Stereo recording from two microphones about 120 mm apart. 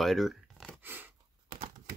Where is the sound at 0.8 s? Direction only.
15° right (ahead or behind).